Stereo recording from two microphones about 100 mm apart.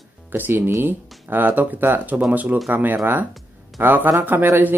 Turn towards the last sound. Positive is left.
turn(degrees=-20)  # may be behind; listen again after turning